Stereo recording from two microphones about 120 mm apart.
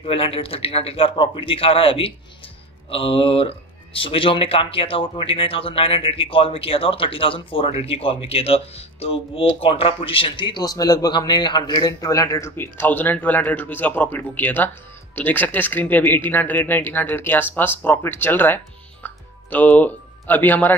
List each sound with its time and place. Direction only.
0.0 s speech: 55° left (ahead or behind); by 20.7 s 15° left (ahead or behind)